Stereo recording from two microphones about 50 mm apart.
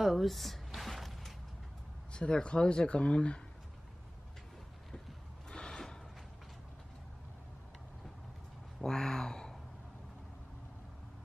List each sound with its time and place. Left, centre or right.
0.0 s a sound: centre
2.1 s speech: centre
5.5 s gasp: centre
8.8 s speech: centre